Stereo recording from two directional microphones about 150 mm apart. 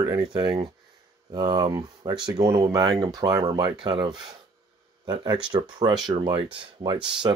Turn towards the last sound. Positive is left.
turn(degrees=-25)  # may be behind; listen again after turning